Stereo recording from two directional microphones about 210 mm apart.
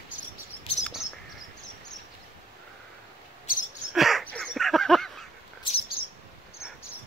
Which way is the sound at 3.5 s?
40° left (ahead or behind).